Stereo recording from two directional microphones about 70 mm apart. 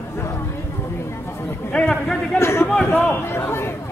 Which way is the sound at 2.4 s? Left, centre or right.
Left.